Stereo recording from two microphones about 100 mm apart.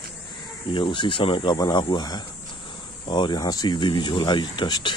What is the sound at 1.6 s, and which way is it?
Speech, 45° left (ahead or behind).